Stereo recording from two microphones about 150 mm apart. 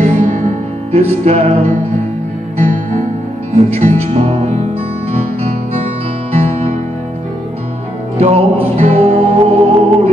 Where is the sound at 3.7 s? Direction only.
50° right (ahead or behind).